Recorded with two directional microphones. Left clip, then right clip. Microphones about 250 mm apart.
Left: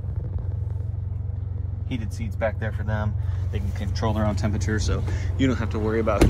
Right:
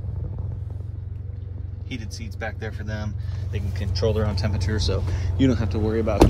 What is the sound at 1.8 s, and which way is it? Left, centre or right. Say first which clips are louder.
Speech: left 1 dB; left.